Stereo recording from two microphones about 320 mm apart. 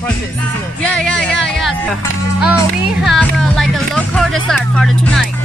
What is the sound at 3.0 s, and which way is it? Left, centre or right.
Speech, centre.